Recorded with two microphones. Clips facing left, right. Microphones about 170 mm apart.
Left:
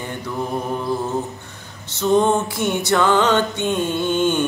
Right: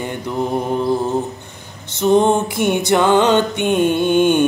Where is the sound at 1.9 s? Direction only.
15° right (ahead or behind).